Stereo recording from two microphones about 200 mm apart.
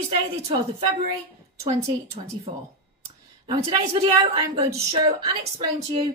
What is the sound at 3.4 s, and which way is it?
A woman's voice, 25° right (ahead or behind).